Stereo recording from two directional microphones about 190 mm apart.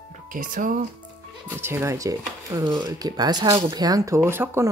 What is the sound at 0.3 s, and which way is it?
Speech, 45° right (ahead or behind).